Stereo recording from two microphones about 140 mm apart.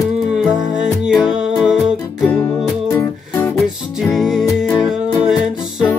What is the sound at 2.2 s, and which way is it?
Music, 10° left (ahead or behind).